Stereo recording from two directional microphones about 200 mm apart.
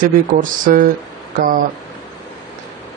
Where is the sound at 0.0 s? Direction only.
40° right (ahead or behind).